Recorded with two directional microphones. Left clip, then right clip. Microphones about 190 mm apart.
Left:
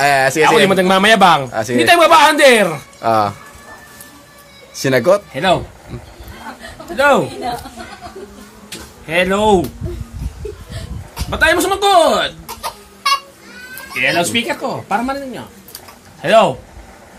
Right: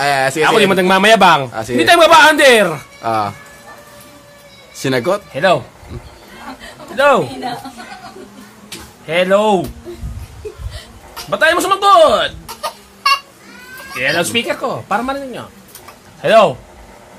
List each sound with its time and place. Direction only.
0.0 s speech: 15° left (ahead or behind)
0.6 s speech: 10° right (ahead or behind)
1.5 s speech: 10° left (ahead or behind)
1.8 s speech: 15° right (ahead or behind)
3.0 s speech: 15° left (ahead or behind)
4.7 s speech: 5° left (ahead or behind)
7.0 s a man's voice: centre (ahead or behind)
9.0 s speech: 5° right (ahead or behind)
11.2 s a man's voice: centre (ahead or behind)
13.9 s speech: 10° right (ahead or behind)